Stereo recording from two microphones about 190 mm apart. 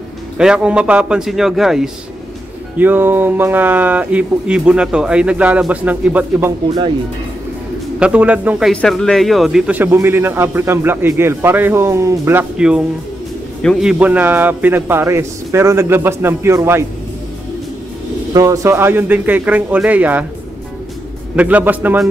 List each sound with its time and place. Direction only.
0.4 s a man's voice: 5° right (ahead or behind)
8.0 s speech: 5° right (ahead or behind)
18.3 s speech: 15° right (ahead or behind)
21.4 s speech: 10° right (ahead or behind)